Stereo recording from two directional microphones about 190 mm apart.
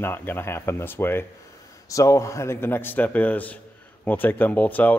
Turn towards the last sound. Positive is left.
turn(degrees=10)  # may be behind; listen again after turning